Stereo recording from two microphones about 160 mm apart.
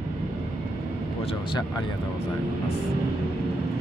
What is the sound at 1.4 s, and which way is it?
Speech, 30° left (ahead or behind).